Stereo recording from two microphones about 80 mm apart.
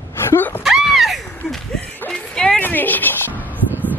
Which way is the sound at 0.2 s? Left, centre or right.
Left.